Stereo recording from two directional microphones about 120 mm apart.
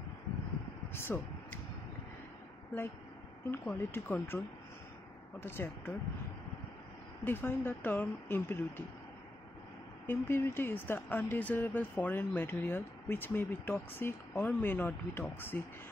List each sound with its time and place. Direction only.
0.9 s speech: 20° left (ahead or behind)
3.4 s speech: 20° left (ahead or behind)
5.4 s speech: 20° left (ahead or behind)
7.2 s speech: 20° left (ahead or behind)
10.0 s speech: 20° left (ahead or behind)